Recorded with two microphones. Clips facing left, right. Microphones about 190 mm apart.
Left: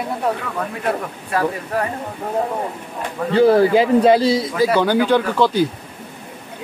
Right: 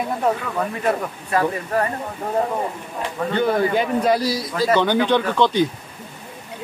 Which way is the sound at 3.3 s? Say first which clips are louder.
Left 7 dB; 30° left (ahead or behind).